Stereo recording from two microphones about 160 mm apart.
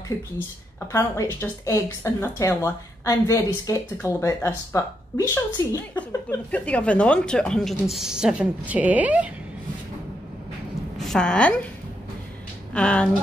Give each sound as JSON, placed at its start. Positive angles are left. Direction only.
{"t": 0.9, "sound": "a woman's voice", "side_deg": 20}
{"t": 11.1, "sound": "a woman's voice", "side_deg": 5}
{"t": 12.7, "sound": "speech", "side_deg": 5}